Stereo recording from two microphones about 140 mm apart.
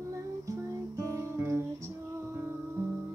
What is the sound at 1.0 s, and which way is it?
Music, 20° right (ahead or behind).